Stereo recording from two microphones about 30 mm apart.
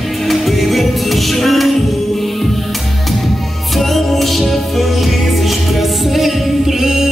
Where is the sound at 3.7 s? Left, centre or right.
Centre.